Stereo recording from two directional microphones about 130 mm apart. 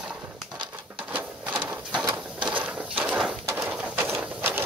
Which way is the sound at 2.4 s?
10° right (ahead or behind).